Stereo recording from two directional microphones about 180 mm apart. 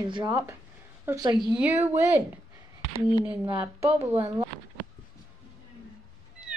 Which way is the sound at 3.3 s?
30° right (ahead or behind).